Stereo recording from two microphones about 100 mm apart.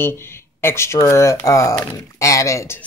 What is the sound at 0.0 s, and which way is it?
Speech, 25° left (ahead or behind).